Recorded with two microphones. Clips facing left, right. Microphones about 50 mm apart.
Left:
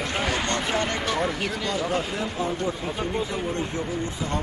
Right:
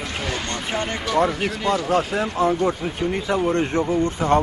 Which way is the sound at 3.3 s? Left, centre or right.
Right.